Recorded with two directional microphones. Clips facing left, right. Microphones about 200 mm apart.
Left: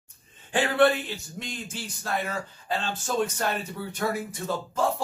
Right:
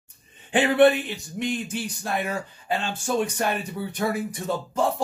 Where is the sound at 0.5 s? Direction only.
20° right (ahead or behind).